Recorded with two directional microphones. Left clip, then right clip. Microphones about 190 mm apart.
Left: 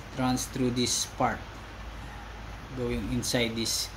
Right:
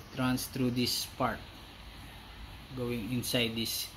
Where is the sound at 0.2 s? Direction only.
20° right (ahead or behind).